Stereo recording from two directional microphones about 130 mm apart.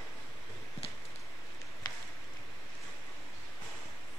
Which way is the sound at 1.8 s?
35° left (ahead or behind).